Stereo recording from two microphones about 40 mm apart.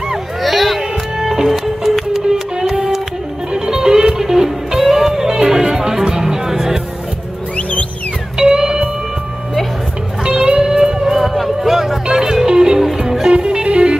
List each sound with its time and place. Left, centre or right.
0.4 s music: centre
8.4 s music: centre
10.2 s music: right
11.1 s music: centre; by 13.9 s right